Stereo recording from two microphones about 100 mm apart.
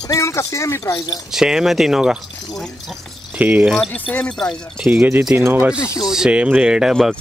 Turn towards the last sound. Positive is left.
turn(degrees=-5)  # may be behind; listen again after turning